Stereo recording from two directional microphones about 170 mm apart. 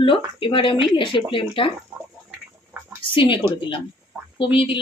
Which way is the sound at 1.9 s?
15° right (ahead or behind).